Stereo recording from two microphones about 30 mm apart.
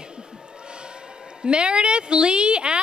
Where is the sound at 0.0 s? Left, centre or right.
Right.